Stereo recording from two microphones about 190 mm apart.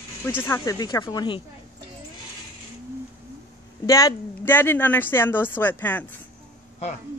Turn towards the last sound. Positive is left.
turn(degrees=10)  # may be behind; listen again after turning